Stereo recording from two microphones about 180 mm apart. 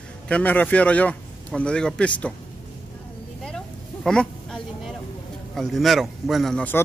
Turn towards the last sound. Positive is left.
turn(degrees=5)  # may be behind; listen again after turning